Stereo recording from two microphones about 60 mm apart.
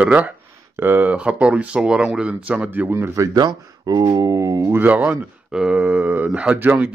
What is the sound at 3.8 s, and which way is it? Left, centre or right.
Speech, right.